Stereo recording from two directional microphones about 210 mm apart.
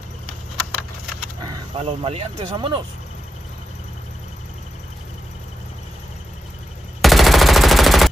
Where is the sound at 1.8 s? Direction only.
30° right (ahead or behind).